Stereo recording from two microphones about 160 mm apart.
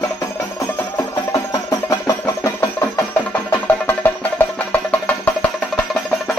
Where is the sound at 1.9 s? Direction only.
20° left (ahead or behind).